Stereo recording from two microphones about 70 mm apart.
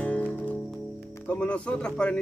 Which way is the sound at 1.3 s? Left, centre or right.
Centre.